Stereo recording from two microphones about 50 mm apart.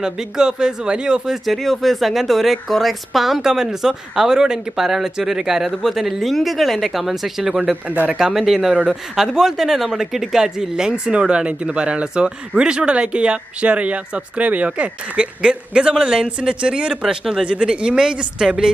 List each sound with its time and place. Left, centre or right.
0.0 s speech: centre
7.9 s speech: right
8.2 s speech: centre
17.2 s speech: centre
17.5 s speech: centre